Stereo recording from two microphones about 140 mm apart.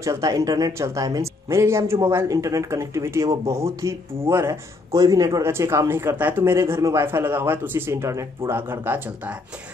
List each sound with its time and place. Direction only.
0.0 s speech: 25° right (ahead or behind)